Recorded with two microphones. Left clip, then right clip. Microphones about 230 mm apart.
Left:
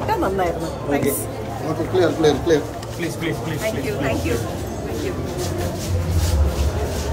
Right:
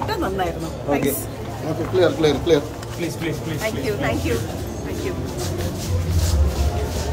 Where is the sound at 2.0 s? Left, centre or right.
Centre.